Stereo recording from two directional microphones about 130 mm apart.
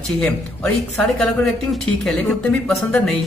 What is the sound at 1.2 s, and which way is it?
A woman's voice, 5° left (ahead or behind).